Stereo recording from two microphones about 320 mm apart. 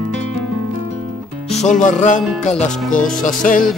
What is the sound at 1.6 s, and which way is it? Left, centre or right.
Music, left.